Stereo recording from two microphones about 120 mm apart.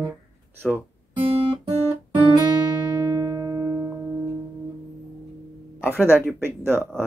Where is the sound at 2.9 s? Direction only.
30° right (ahead or behind).